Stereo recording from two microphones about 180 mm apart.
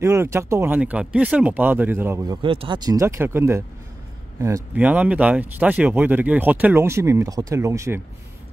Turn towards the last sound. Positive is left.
turn(degrees=-15)  # may be behind; listen again after turning